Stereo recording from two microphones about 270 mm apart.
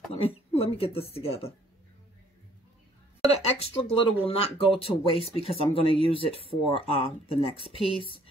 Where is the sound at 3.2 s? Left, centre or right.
Left.